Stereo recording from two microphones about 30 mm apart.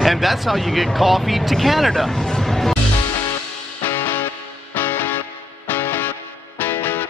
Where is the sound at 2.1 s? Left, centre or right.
Centre.